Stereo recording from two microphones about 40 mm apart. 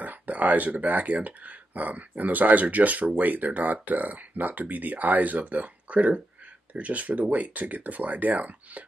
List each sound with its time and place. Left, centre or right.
0.0 s speech: right